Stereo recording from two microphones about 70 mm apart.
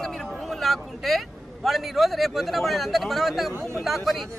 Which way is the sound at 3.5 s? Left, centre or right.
Right.